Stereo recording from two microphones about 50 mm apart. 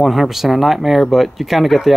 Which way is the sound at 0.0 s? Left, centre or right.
Centre.